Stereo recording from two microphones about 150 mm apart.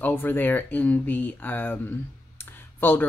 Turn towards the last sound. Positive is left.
turn(degrees=15)  # may be behind; listen again after turning